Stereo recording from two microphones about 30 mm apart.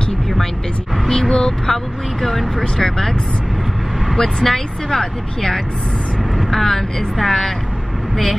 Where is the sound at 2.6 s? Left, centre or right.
Centre.